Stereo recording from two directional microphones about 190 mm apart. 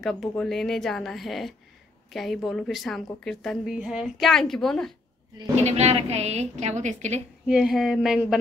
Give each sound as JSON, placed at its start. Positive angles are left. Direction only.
{"t": 0.0, "sound": "a woman's voice", "side_deg": 0}
{"t": 5.6, "sound": "a woman's voice", "side_deg": -35}
{"t": 7.4, "sound": "a woman's voice", "side_deg": -5}